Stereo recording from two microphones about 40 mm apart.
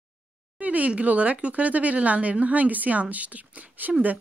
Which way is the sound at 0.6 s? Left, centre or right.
Right.